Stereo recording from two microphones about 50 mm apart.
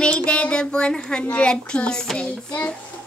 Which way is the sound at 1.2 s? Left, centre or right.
Left.